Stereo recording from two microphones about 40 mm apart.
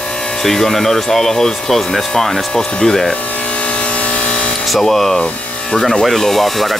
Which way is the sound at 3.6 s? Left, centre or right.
Left.